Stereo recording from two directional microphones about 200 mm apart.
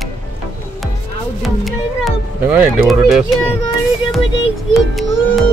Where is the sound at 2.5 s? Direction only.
5° right (ahead or behind).